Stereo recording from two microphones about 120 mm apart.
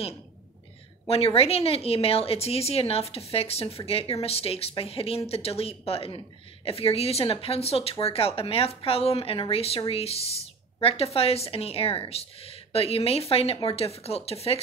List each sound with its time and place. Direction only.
1.0 s a woman's voice: 55° left (ahead or behind)